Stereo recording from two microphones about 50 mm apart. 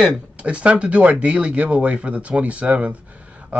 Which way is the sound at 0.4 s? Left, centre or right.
Right.